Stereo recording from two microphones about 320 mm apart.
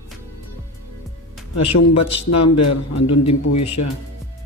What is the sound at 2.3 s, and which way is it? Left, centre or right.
Speech, left.